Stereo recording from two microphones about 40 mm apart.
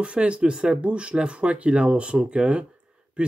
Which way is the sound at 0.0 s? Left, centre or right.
Right.